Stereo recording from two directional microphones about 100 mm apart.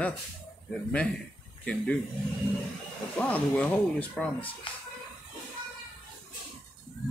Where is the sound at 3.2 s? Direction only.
15° left (ahead or behind).